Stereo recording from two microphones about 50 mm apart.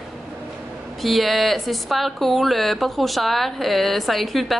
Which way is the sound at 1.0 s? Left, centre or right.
Centre.